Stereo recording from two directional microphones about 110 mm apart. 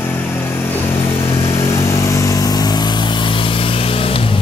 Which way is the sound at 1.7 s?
30° left (ahead or behind).